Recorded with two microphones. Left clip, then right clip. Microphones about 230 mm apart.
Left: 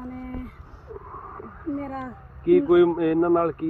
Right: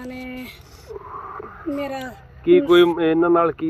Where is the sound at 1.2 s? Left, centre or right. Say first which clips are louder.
Right 7 dB; right.